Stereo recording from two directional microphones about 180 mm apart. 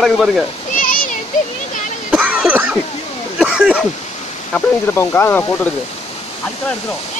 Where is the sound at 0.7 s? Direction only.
50° left (ahead or behind).